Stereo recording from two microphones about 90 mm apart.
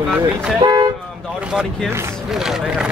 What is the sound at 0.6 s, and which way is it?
Speech, 50° right (ahead or behind).